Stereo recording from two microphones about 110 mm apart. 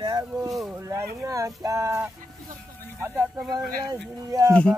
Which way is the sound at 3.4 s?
Centre (ahead or behind).